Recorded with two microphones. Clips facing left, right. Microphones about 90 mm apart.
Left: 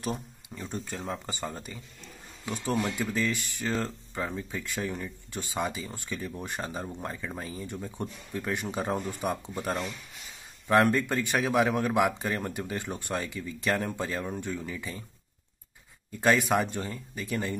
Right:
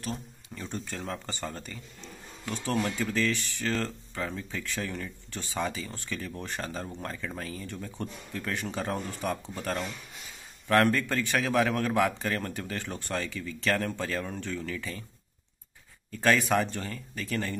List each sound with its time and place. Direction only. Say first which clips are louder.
0.0 s speech: left 3 dB; 10° left (ahead or behind)
16.1 s speech: left 1 dB; 15° left (ahead or behind)